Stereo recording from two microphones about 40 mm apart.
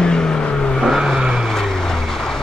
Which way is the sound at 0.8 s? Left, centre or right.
Centre.